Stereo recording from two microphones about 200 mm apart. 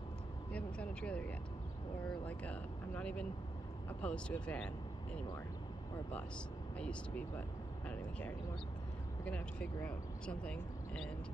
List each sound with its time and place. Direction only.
0.5 s speech: 5° left (ahead or behind)
2.2 s speech: 10° left (ahead or behind)
6.8 s speech: 5° left (ahead or behind)